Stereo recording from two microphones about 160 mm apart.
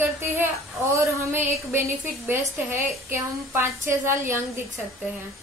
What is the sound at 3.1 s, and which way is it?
A woman's voice, 15° right (ahead or behind).